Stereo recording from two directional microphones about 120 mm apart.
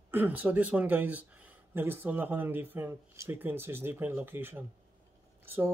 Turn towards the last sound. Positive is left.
turn(degrees=-20)  # may be behind; listen again after turning